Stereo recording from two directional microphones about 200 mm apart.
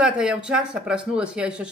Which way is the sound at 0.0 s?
5° right (ahead or behind).